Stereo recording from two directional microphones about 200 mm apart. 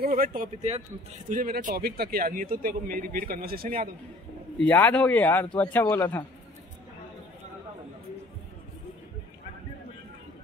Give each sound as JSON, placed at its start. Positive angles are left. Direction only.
{"t": 0.0, "sound": "a man's voice", "side_deg": -45}
{"t": 4.7, "sound": "speech", "side_deg": 10}